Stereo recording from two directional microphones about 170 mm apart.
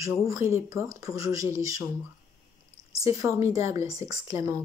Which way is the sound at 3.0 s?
20° right (ahead or behind).